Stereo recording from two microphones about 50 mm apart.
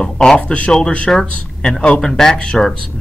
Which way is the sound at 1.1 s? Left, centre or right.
Centre.